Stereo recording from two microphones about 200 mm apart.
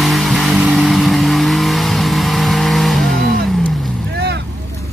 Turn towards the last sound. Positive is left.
turn(degrees=-55)  # may be behind; listen again after turning